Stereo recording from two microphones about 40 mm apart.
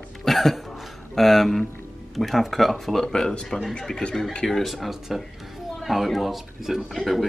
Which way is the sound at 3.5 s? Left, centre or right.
Centre.